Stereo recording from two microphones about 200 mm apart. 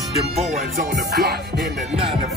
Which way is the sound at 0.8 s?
50° right (ahead or behind).